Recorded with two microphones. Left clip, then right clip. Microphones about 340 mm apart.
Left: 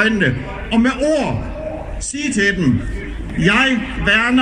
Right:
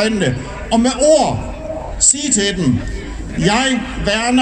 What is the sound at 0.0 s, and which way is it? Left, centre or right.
A man's voice, centre.